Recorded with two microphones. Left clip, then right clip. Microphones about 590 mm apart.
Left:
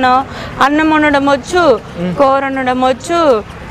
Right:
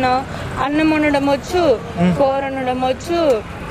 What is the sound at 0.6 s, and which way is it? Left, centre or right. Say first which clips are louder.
Speech: left 6 dB; left.